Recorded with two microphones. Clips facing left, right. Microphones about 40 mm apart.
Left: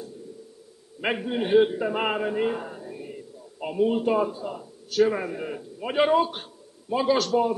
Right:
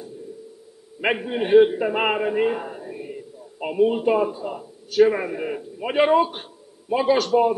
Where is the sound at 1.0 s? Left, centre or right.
Centre.